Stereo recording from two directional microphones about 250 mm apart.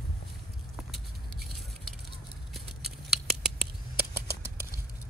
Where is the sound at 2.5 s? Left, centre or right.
Centre.